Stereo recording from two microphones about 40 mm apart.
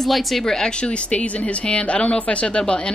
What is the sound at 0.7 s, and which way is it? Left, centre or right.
Speech, left.